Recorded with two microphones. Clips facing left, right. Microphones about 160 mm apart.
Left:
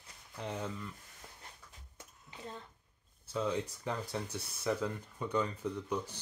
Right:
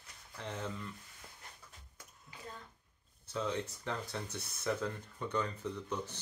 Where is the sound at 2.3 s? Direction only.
25° left (ahead or behind).